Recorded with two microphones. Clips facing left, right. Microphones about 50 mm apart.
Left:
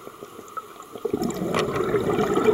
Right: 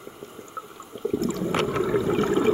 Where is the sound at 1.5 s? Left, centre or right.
Right.